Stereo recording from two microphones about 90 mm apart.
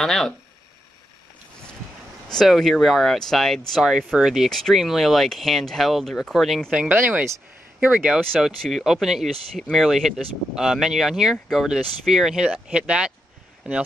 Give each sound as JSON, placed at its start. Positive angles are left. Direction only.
{"t": 0.0, "sound": "speech", "side_deg": 5}
{"t": 2.2, "sound": "speech", "side_deg": 0}
{"t": 6.7, "sound": "speech", "side_deg": -15}
{"t": 8.5, "sound": "speech", "side_deg": 0}